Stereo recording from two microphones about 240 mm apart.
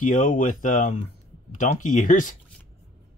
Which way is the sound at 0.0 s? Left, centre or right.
Left.